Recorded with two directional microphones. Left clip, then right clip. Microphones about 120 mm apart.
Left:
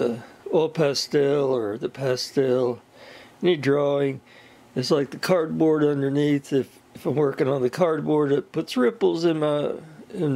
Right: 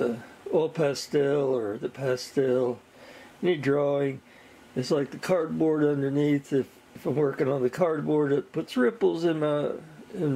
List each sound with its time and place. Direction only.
0.0 s speech: 40° left (ahead or behind)